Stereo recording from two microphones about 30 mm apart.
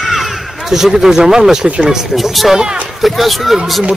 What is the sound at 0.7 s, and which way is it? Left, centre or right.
Speech, centre.